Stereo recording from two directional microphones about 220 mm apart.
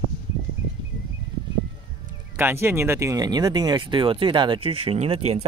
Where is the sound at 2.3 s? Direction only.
10° right (ahead or behind).